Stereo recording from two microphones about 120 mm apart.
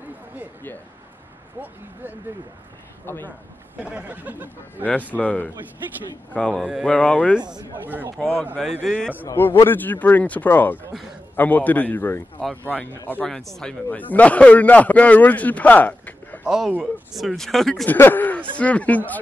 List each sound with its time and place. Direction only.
3.1 s a man's voice: 15° left (ahead or behind)
3.8 s speech: 10° right (ahead or behind)
5.1 s a man's voice: 15° left (ahead or behind)
6.6 s speech: 5° right (ahead or behind)
6.9 s a man's voice: 10° left (ahead or behind)
7.8 s speech: 15° right (ahead or behind)
8.8 s speech: 5° left (ahead or behind)
9.1 s a man's voice: 15° left (ahead or behind)
13.3 s speech: 5° left (ahead or behind)
13.8 s a man's voice: 15° left (ahead or behind)
16.4 s speech: 5° right (ahead or behind)
17.8 s a man's voice: 15° left (ahead or behind)